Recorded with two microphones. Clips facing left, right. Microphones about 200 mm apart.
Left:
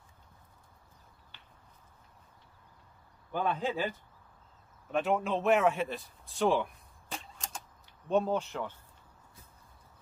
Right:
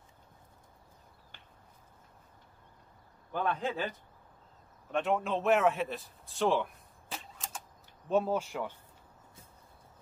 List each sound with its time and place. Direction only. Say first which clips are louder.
1.3 s a sound: right 2 dB; 50° right (ahead or behind)
3.3 s a man's voice: left 1 dB; 5° left (ahead or behind)
4.9 s speech: left 1 dB; centre (ahead or behind)